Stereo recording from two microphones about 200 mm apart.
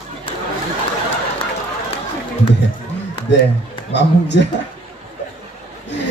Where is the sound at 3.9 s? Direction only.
60° left (ahead or behind).